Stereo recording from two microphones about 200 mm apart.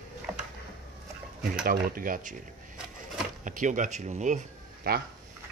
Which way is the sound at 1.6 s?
45° right (ahead or behind).